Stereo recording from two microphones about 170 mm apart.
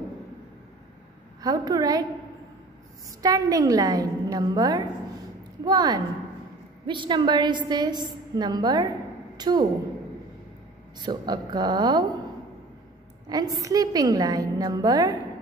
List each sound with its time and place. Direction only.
1.4 s a woman's voice: 25° right (ahead or behind)
3.2 s a woman's voice: 20° right (ahead or behind)
11.0 s a woman's voice: 25° right (ahead or behind)
13.3 s a woman's voice: 20° right (ahead or behind)